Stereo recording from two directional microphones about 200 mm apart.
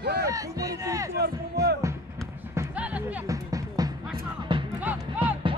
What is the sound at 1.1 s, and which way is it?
Speech, 55° right (ahead or behind).